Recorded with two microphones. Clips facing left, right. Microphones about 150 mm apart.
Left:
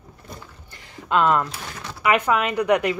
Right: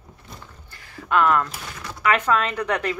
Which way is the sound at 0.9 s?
20° left (ahead or behind).